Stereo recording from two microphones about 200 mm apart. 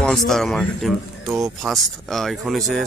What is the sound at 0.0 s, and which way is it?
Speech, centre (ahead or behind).